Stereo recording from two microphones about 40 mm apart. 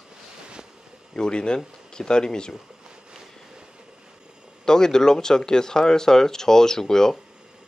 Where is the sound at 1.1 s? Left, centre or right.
Centre.